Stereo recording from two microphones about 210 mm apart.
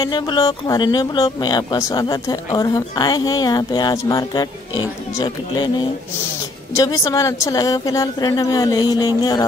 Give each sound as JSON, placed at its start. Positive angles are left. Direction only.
{"t": 0.0, "sound": "a woman's voice", "side_deg": 20}